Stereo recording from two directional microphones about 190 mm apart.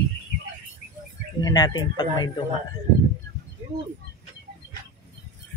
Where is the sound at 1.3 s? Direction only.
20° left (ahead or behind).